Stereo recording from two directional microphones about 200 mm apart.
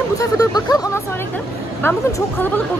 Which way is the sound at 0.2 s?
20° left (ahead or behind).